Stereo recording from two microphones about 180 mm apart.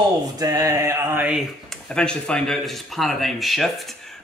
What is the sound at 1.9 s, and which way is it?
Speech, 5° left (ahead or behind).